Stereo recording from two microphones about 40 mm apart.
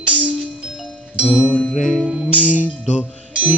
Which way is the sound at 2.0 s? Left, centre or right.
Centre.